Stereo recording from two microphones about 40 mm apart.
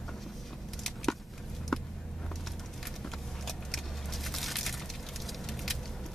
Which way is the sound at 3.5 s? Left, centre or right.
Centre.